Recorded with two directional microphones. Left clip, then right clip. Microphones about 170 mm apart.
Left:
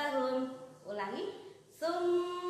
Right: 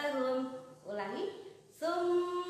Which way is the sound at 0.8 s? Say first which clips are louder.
Even; 15° left (ahead or behind).